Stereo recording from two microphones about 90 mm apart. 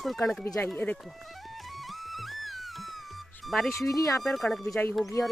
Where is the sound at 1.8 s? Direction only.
Centre (ahead or behind).